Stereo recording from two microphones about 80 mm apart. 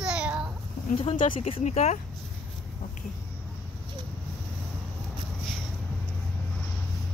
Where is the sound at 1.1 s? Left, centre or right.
Left.